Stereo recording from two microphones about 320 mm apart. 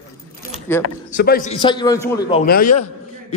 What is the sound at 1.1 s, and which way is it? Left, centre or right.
Speech, left.